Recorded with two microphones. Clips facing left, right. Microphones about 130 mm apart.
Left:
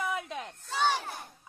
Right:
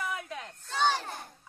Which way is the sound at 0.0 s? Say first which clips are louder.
Left 3 dB; 20° left (ahead or behind).